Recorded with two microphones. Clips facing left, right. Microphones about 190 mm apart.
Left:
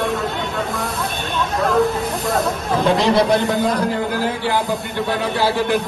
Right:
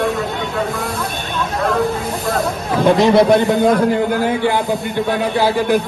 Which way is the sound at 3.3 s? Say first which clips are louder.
Right 5 dB; centre (ahead or behind).